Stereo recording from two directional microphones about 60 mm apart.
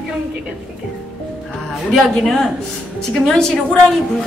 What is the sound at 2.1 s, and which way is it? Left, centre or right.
A woman's voice, centre.